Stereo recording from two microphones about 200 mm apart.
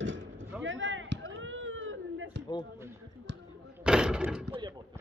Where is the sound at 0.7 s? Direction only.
70° right (ahead or behind).